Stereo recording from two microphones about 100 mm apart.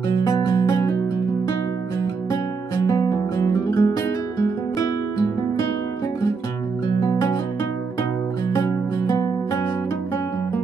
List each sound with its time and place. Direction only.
0.1 s music: 40° left (ahead or behind)
2.7 s music: 40° left (ahead or behind)
6.9 s music: 45° left (ahead or behind)
8.5 s music: 30° left (ahead or behind)